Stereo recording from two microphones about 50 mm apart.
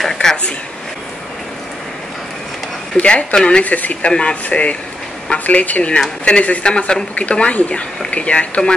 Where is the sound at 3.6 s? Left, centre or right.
Left.